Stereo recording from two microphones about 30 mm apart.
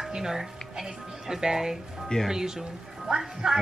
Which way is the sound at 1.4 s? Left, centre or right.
Right.